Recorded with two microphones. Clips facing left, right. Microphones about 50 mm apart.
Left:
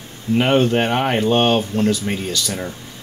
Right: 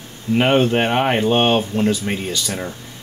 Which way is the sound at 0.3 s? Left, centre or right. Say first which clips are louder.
Even; centre.